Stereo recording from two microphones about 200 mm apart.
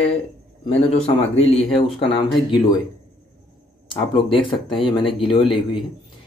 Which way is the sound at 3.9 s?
25° left (ahead or behind).